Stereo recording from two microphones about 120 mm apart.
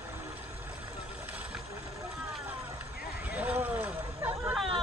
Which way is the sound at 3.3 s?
15° right (ahead or behind).